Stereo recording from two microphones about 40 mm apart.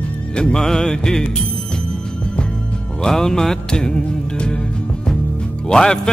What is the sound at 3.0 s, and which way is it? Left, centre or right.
Music, centre.